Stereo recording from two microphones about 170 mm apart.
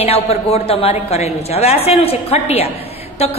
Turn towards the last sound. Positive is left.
turn(degrees=35)  # may be behind; listen again after turning